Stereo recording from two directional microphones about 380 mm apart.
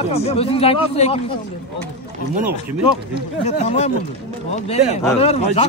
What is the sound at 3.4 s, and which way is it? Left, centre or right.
Speech, centre.